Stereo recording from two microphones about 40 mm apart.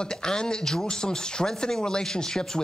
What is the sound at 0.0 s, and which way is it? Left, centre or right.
Speech, centre.